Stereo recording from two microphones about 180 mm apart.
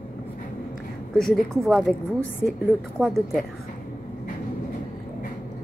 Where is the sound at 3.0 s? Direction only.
Centre (ahead or behind).